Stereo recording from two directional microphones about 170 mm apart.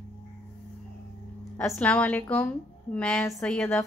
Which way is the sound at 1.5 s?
15° left (ahead or behind).